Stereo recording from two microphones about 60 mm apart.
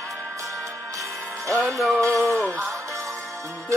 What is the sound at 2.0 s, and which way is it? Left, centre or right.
Music, right.